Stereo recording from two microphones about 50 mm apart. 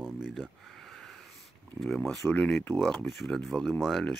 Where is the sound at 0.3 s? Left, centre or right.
Centre.